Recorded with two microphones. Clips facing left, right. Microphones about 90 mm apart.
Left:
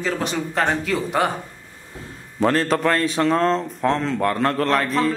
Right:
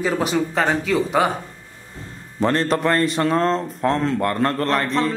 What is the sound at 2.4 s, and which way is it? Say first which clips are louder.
Speech: even; 5° left (ahead or behind).